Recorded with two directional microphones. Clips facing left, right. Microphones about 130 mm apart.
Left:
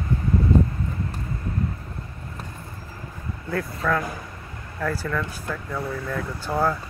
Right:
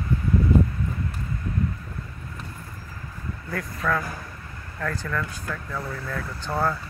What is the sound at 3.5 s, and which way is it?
Speech, centre (ahead or behind).